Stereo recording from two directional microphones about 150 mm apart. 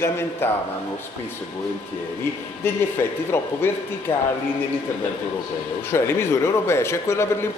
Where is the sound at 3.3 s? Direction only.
15° left (ahead or behind).